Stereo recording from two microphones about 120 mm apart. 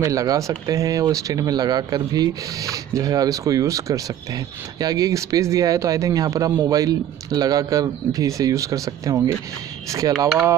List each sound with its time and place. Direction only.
0.0 s speech: 30° right (ahead or behind)